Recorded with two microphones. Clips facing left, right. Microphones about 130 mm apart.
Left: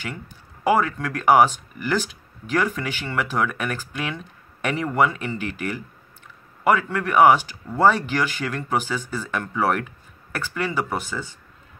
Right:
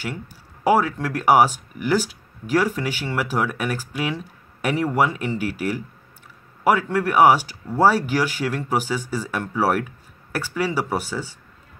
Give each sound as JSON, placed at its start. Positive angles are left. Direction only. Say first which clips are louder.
{"t": 0.7, "sound": "speech", "louder": "right 2 dB", "side_deg": -10}